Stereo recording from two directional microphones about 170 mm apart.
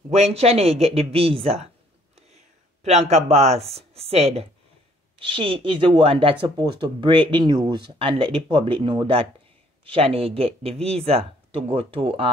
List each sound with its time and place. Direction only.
0.1 s speech: 40° right (ahead or behind)